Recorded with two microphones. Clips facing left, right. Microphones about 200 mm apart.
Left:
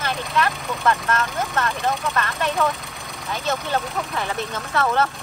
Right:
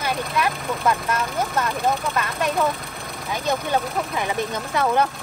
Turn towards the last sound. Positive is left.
turn(degrees=-15)  # may be behind; listen again after turning